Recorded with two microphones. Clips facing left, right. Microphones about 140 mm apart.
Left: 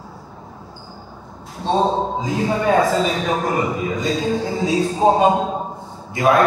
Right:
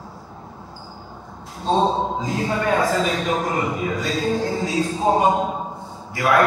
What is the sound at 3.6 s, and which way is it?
A man's voice, 20° left (ahead or behind).